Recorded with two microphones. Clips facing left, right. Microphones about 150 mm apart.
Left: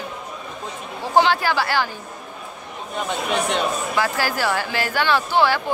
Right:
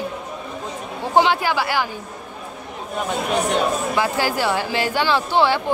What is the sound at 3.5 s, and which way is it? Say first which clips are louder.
Speech: right 2 dB; 20° right (ahead or behind).